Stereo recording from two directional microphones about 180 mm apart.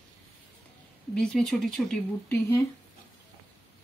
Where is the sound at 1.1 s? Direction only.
5° left (ahead or behind).